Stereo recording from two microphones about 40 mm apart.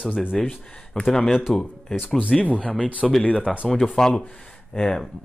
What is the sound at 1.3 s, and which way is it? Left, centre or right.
Speech, centre.